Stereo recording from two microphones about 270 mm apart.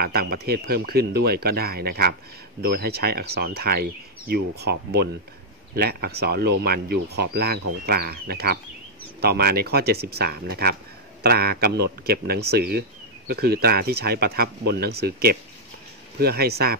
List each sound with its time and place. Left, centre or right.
0.0 s speech: right